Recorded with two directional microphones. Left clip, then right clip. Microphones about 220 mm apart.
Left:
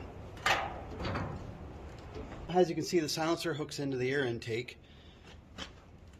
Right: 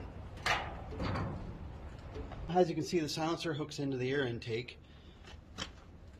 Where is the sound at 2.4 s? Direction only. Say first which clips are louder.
Left 1 dB; 15° left (ahead or behind).